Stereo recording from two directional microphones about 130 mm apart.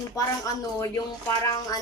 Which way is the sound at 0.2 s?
30° left (ahead or behind).